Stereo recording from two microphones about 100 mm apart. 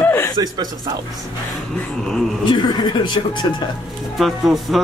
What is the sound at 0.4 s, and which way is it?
Speech, 45° right (ahead or behind).